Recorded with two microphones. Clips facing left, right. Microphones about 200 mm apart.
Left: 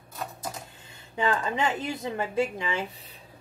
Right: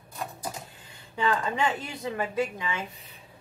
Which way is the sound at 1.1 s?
20° left (ahead or behind).